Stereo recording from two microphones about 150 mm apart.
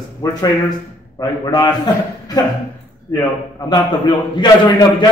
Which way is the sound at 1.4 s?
25° left (ahead or behind).